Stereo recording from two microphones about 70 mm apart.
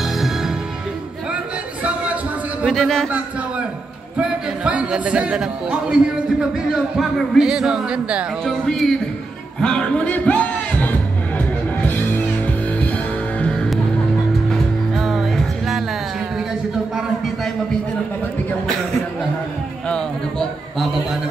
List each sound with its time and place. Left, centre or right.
0.0 s music: centre
2.6 s speech: centre
4.2 s speech: centre
8.5 s speech: centre
9.6 s music: centre
13.4 s music: centre